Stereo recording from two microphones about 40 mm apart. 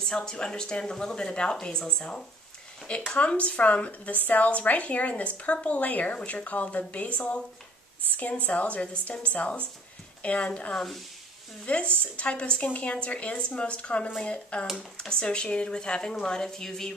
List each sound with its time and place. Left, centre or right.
0.0 s a woman's voice: centre; by 10.7 s left
10.7 s speech: centre
11.6 s a woman's voice: left; by 16.9 s centre